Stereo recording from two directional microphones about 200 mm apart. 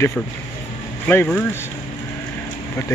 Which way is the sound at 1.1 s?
10° left (ahead or behind).